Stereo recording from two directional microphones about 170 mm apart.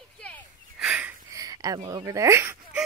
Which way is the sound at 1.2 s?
20° right (ahead or behind).